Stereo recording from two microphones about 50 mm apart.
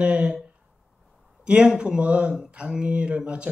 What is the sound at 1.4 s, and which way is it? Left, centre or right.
A man's voice, centre.